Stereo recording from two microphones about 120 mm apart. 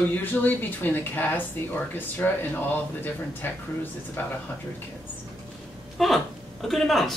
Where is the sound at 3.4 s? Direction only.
15° left (ahead or behind).